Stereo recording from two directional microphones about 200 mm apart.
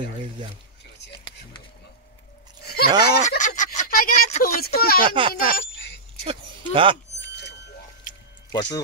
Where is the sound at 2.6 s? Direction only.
50° left (ahead or behind).